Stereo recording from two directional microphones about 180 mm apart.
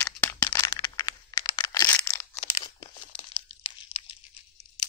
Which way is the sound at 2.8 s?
30° left (ahead or behind).